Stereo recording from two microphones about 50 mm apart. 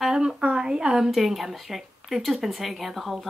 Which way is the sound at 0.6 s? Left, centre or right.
Centre.